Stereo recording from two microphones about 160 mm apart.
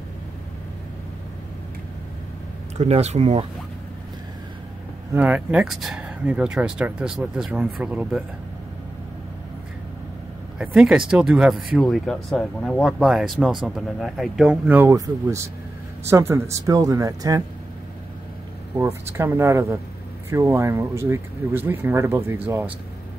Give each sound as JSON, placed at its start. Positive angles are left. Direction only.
{"t": 2.8, "sound": "speech", "side_deg": -45}
{"t": 5.1, "sound": "speech", "side_deg": -10}
{"t": 10.6, "sound": "speech", "side_deg": -5}
{"t": 18.8, "sound": "speech", "side_deg": -15}